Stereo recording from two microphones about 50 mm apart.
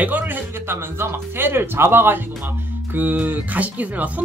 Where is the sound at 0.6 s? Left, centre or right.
Right.